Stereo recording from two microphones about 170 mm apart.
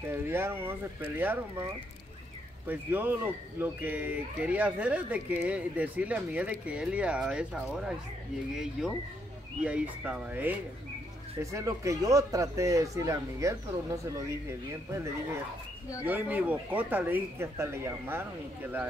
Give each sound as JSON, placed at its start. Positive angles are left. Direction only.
{"t": 0.1, "sound": "a man's voice", "side_deg": -15}